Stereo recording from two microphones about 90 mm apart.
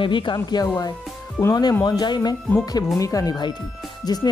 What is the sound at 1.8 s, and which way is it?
Speech, 55° left (ahead or behind).